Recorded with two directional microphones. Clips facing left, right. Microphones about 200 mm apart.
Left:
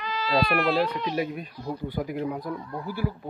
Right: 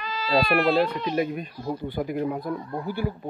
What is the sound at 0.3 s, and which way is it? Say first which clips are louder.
Speech: right 3 dB; 10° right (ahead or behind).